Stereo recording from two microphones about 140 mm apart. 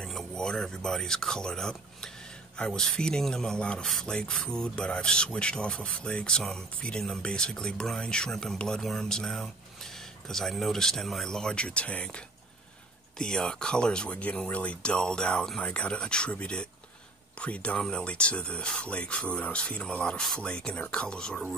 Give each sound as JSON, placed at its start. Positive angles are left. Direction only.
{"t": 0.0, "sound": "speech", "side_deg": 5}
{"t": 13.2, "sound": "speech", "side_deg": 5}